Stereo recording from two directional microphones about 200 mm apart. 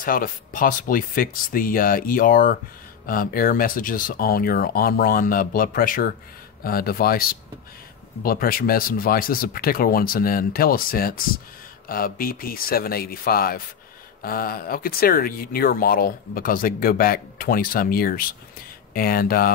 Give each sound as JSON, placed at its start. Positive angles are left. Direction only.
{"t": 0.0, "sound": "speech", "side_deg": 45}